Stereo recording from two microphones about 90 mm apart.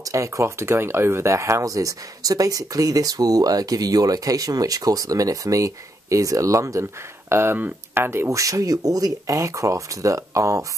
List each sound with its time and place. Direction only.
0.1 s speech: 35° right (ahead or behind)